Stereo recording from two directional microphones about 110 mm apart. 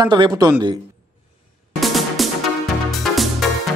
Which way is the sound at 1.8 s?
Centre (ahead or behind).